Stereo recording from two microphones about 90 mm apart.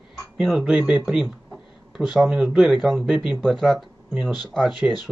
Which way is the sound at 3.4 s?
5° left (ahead or behind).